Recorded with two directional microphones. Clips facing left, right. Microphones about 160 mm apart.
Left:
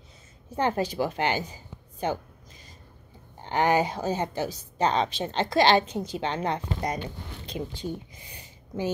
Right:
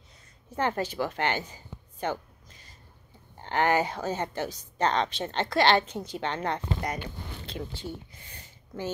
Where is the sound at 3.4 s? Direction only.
15° left (ahead or behind).